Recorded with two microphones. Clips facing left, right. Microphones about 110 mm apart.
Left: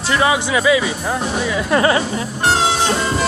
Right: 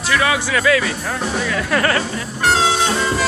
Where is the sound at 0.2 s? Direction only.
20° left (ahead or behind).